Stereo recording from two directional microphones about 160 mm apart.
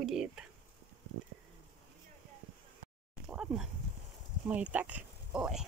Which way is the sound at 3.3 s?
5° right (ahead or behind).